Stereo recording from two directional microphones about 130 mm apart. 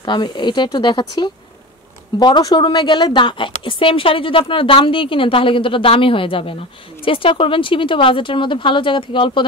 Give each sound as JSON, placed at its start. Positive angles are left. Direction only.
{"t": 0.0, "sound": "a woman's voice", "side_deg": 35}